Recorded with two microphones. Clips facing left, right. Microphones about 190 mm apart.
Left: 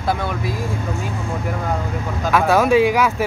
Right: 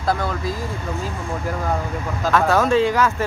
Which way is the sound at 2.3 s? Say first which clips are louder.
Left 2 dB; 10° left (ahead or behind).